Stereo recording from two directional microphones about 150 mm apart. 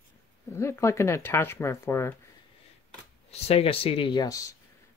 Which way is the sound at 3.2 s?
45° left (ahead or behind).